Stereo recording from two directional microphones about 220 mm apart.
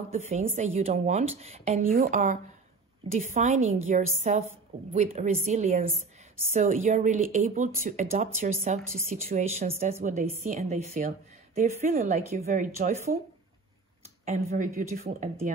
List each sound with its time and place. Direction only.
0.1 s a woman's voice: 30° right (ahead or behind)
14.2 s speech: 35° right (ahead or behind)